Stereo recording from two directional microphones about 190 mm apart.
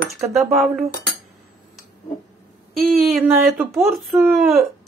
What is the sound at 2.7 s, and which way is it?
Speech, 50° right (ahead or behind).